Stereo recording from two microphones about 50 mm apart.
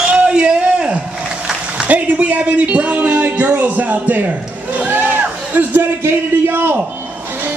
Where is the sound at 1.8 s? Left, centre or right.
Right.